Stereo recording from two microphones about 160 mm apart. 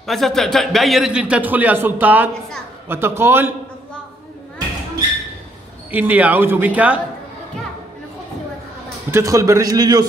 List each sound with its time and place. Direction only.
0.0 s a man's voice: centre (ahead or behind)
5.9 s a man's voice: 10° right (ahead or behind)
9.1 s a man's voice: 20° right (ahead or behind)